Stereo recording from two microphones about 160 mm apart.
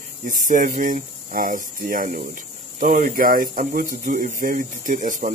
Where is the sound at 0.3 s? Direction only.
55° right (ahead or behind).